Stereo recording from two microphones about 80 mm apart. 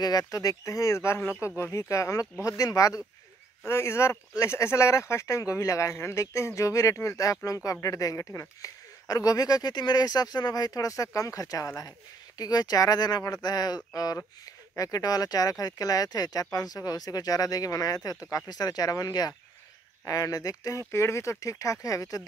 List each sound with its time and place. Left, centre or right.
0.0 s speech: left
3.6 s speech: left